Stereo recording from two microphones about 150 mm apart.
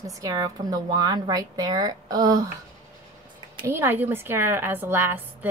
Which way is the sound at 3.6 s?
15° right (ahead or behind).